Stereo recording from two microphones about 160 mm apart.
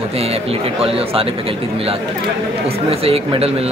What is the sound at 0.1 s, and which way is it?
A man's voice, 40° right (ahead or behind).